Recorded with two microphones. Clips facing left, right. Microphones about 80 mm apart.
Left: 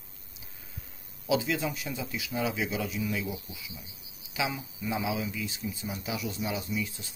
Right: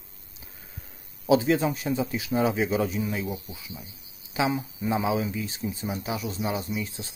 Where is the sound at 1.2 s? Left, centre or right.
Right.